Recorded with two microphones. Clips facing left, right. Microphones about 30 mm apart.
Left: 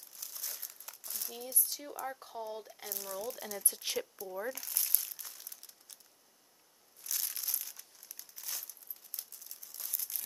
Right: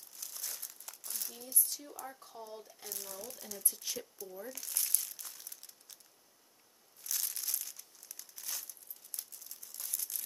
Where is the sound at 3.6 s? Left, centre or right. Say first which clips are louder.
Left 4 dB; left.